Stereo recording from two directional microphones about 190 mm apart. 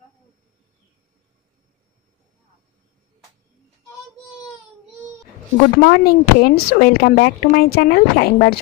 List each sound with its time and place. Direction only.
5.8 s speech: 50° left (ahead or behind)